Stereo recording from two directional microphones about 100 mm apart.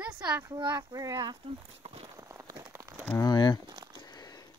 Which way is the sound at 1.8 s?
85° right.